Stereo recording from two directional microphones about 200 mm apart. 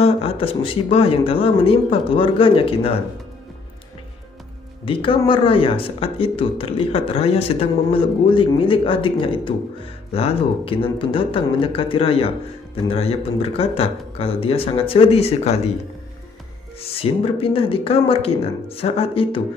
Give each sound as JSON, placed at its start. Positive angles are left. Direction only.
{"t": 0.0, "sound": "speech", "side_deg": 30}
{"t": 4.8, "sound": "speech", "side_deg": 25}
{"t": 16.8, "sound": "speech", "side_deg": 30}